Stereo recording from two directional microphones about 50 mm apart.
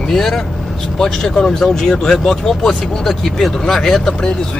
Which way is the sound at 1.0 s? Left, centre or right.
Centre.